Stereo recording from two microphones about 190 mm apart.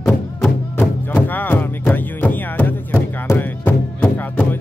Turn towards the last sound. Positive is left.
turn(degrees=10)  # may be behind; listen again after turning